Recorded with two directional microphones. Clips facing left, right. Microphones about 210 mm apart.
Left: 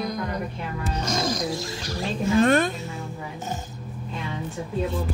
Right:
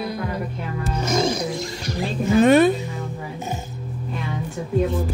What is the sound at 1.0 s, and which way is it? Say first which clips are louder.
Music: right 5 dB; 10° right (ahead or behind).